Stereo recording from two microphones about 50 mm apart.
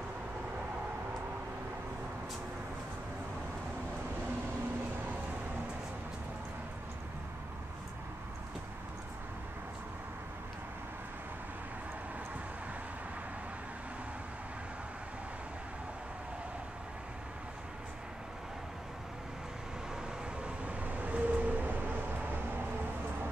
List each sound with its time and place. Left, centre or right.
20.4 s vehicle: right